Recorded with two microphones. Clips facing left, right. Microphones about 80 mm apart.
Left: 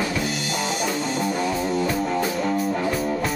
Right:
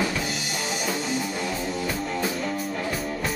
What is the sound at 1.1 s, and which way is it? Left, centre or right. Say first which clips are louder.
Music: left 5 dB; left.